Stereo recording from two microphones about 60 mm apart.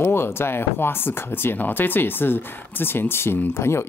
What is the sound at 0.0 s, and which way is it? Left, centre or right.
Speech, left.